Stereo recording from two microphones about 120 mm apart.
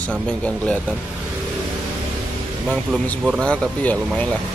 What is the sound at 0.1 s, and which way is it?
Speech, 10° left (ahead or behind).